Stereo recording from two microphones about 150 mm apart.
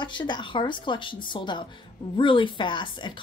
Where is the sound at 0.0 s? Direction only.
30° left (ahead or behind).